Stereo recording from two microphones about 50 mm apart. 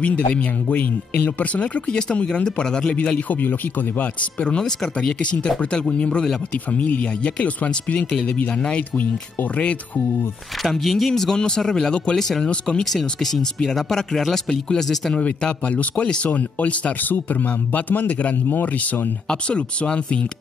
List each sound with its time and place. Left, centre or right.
0.0 s speech: left
2.9 s speech: left
8.1 s speech: centre
10.6 s speech: centre
12.4 s speech: left
13.0 s speech: centre
15.1 s speech: left
17.1 s speech: left
19.2 s speech: left